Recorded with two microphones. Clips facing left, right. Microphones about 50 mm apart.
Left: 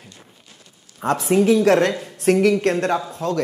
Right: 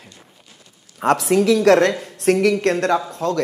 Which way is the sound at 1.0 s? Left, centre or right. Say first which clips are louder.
Right 1 dB; right.